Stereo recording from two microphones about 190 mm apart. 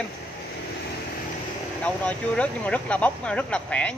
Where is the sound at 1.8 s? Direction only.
5° left (ahead or behind).